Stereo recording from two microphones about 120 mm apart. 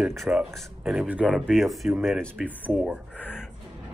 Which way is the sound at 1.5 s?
Centre (ahead or behind).